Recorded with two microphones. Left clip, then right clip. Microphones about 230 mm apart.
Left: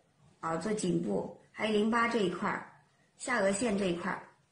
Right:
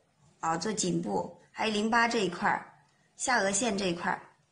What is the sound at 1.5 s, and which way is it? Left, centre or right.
A woman's voice, right.